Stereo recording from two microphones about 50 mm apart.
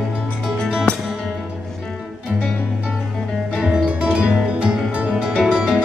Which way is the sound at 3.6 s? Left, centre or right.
Right.